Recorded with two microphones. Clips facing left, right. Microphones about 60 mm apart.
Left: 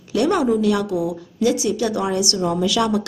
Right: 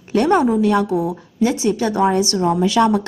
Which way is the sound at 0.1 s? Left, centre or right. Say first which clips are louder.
Right 3 dB; right.